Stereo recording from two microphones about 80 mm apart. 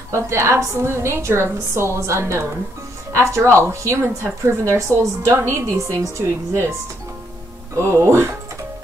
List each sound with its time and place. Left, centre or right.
0.1 s a woman's voice: right
7.7 s a woman's voice: right